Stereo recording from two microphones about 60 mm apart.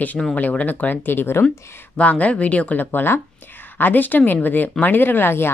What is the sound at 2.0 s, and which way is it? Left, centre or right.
Speech, left.